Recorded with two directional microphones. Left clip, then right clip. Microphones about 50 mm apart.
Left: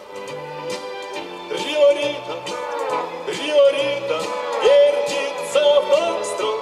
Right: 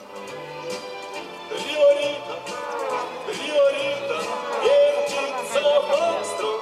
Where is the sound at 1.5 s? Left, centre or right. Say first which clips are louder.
Left 2 dB; left.